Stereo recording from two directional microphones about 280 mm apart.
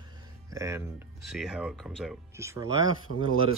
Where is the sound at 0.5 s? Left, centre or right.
Centre.